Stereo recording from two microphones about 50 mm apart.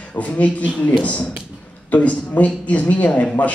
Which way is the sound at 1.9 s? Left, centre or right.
Left.